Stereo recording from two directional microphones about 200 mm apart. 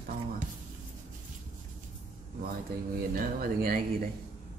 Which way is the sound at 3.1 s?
45° right (ahead or behind).